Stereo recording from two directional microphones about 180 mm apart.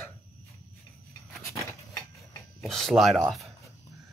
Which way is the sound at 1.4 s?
15° left (ahead or behind).